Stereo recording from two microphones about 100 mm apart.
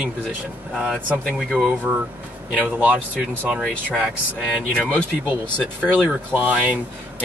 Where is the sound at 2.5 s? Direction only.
15° right (ahead or behind).